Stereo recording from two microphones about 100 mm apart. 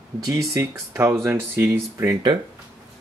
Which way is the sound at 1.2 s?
20° right (ahead or behind).